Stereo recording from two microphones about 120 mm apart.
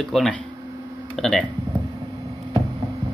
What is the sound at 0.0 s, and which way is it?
Speech, centre (ahead or behind).